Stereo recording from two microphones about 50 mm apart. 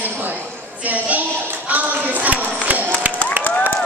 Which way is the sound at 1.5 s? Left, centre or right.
Right.